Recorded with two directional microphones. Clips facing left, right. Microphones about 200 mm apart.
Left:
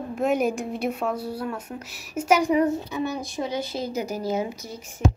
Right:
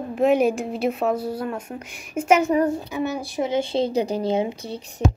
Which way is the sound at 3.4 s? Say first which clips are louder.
Right 8 dB; 25° right (ahead or behind).